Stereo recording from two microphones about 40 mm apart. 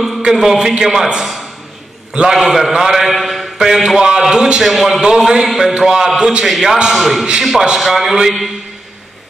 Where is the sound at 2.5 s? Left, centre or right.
Centre.